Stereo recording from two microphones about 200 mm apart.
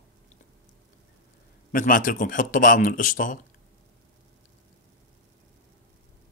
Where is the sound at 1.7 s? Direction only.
45° left (ahead or behind).